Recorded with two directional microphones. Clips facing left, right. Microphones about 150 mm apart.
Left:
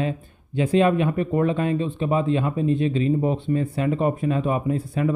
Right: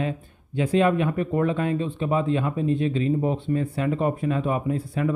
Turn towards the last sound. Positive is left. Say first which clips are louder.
# left 2 dB
turn(degrees=20)  # may be behind; listen again after turning